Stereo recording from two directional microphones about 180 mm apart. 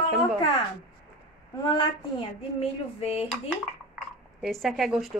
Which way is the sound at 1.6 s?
25° left (ahead or behind).